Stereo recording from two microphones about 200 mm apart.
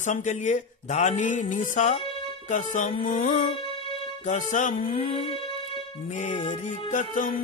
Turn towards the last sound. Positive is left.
turn(degrees=40)  # may be behind; listen again after turning